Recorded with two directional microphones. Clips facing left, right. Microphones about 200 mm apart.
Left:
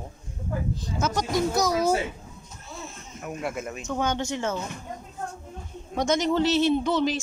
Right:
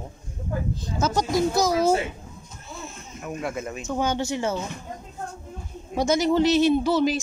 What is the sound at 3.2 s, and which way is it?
Speech, 5° left (ahead or behind).